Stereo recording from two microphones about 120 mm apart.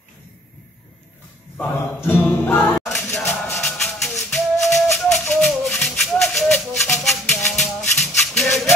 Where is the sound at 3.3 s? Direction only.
5° left (ahead or behind).